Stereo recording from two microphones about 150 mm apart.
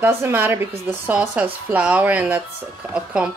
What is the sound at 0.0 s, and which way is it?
A woman's voice, 15° right (ahead or behind).